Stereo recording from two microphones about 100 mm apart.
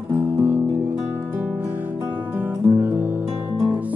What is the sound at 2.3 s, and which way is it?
Guitar, 15° right (ahead or behind).